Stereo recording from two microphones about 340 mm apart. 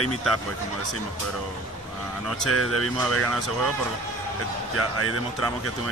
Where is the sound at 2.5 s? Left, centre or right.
Right.